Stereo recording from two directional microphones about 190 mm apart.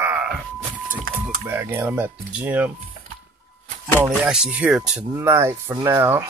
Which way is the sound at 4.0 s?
5° right (ahead or behind).